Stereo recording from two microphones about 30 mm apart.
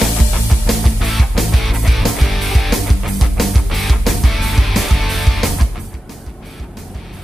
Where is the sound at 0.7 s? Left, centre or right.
Centre.